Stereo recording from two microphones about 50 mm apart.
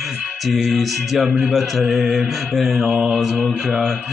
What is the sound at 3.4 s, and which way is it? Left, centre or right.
Mantra, centre.